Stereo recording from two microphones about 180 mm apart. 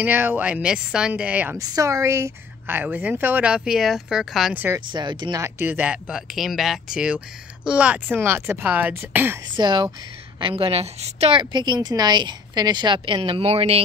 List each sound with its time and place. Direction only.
0.0 s a woman's voice: 10° right (ahead or behind)
4.6 s a woman's voice: 25° right (ahead or behind)
9.6 s a woman's voice: 25° right (ahead or behind)